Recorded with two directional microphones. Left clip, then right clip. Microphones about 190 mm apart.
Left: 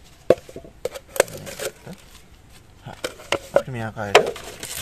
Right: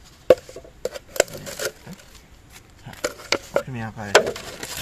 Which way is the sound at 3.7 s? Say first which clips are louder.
Left 4 dB; 45° left (ahead or behind).